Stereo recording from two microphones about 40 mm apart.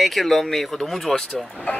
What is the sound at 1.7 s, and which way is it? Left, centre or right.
Speech, left.